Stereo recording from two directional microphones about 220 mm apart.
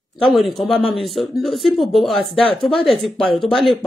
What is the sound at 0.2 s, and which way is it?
Speech, centre (ahead or behind).